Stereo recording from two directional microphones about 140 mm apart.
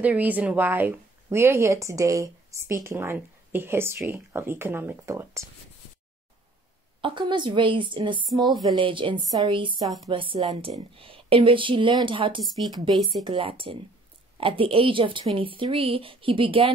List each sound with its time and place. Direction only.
0.0 s speech: 10° right (ahead or behind)
7.0 s speech: 35° right (ahead or behind)